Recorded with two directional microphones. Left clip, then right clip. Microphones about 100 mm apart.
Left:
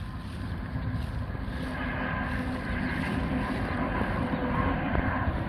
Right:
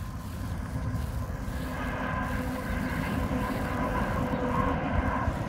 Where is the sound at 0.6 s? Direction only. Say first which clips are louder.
Even; 40° right (ahead or behind).